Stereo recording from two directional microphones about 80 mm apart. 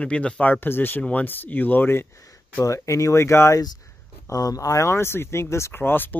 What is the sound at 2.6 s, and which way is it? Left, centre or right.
Speech, left.